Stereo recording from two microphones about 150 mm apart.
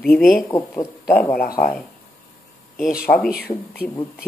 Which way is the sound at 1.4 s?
75° left (ahead or behind).